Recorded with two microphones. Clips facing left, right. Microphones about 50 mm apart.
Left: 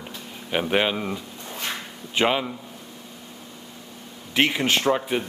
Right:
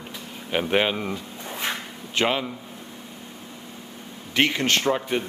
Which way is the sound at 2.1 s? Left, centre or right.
Centre.